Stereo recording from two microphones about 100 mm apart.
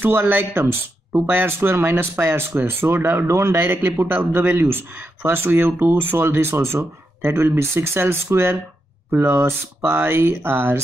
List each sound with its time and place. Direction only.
0.0 s speech: 20° right (ahead or behind)